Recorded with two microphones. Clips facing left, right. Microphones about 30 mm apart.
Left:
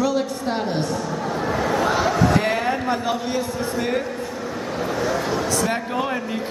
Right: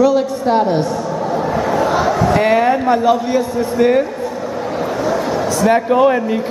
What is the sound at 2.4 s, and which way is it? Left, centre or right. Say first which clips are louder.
A man's voice: right 9 dB; centre.